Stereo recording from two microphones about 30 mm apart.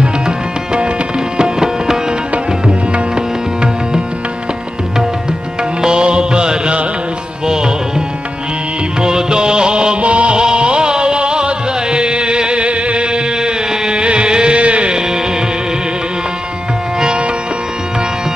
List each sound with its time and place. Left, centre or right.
1.4 s music: centre
3.2 s music: right
5.8 s music: right
9.0 s music: right
10.4 s music: right
14.9 s music: right